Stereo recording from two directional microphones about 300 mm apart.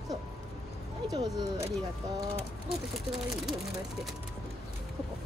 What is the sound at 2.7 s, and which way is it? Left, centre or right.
Speech, centre.